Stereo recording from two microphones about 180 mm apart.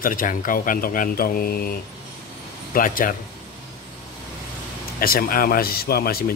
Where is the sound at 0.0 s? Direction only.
50° left (ahead or behind).